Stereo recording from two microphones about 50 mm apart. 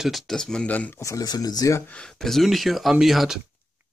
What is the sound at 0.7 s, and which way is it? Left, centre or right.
Speech, left.